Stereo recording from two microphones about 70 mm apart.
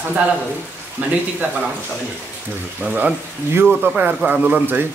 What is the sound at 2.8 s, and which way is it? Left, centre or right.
Speech, centre.